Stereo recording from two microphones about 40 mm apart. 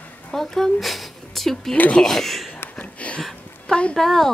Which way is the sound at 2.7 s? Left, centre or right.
Left.